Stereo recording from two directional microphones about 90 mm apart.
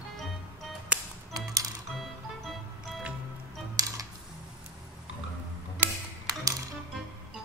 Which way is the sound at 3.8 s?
45° right (ahead or behind).